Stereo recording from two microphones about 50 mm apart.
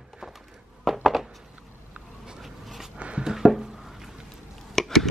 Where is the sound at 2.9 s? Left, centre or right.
Right.